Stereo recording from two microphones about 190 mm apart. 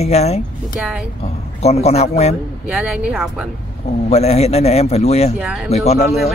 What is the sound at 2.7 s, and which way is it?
Speech, 5° right (ahead or behind).